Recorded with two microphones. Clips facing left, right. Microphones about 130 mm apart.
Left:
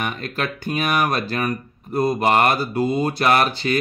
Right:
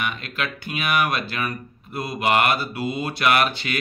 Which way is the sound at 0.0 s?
40° left (ahead or behind).